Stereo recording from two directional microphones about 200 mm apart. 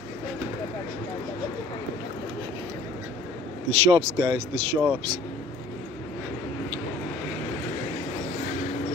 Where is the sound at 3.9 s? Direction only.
25° right (ahead or behind).